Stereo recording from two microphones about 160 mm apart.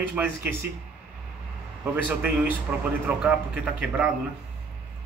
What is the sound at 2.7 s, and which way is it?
A man's voice, 5° right (ahead or behind).